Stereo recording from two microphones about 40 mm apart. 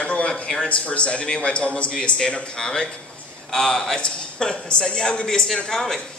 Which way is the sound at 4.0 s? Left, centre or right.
Left.